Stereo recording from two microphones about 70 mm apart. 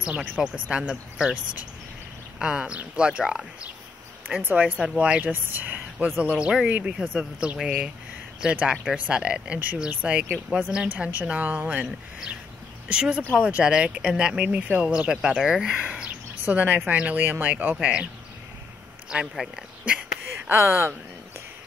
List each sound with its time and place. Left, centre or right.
0.0 s speech: centre
4.4 s speech: right
4.8 s speech: centre
5.3 s speech: right; by 16.1 s centre
16.4 s speech: right
19.0 s speech: centre
20.4 s speech: right